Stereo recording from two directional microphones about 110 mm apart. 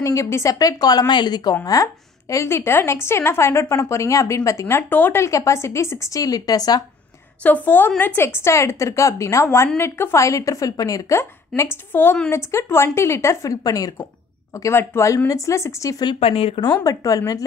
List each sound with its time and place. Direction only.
0.0 s speech: 30° left (ahead or behind)
7.4 s a woman's voice: 15° left (ahead or behind); by 14.0 s 35° left (ahead or behind)
14.6 s speech: 25° left (ahead or behind)
16.2 s speech: 60° left (ahead or behind)
16.8 s a woman's voice: 30° left (ahead or behind)